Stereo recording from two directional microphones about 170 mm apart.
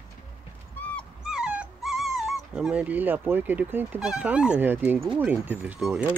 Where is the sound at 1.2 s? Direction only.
5° right (ahead or behind).